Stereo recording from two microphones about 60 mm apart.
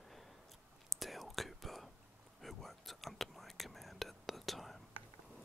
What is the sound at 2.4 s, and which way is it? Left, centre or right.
Whispering, centre.